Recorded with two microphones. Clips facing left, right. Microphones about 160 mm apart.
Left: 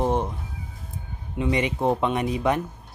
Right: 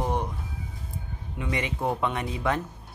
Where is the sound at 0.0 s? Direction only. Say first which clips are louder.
Left 5 dB; 20° left (ahead or behind).